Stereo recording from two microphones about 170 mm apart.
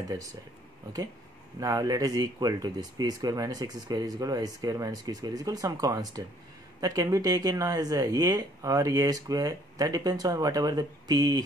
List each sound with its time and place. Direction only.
1.6 s speech: 20° right (ahead or behind)